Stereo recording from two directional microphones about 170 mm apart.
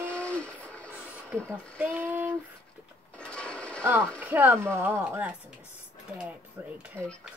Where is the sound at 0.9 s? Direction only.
10° right (ahead or behind).